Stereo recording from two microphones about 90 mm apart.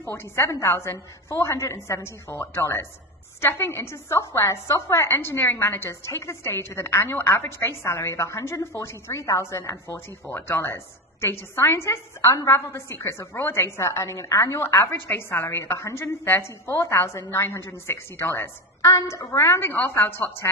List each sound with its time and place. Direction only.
0.0 s a woman's voice: 25° left (ahead or behind)